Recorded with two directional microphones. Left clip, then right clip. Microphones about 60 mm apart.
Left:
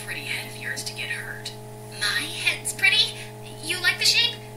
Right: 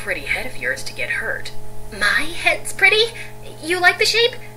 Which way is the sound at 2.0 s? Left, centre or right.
Right.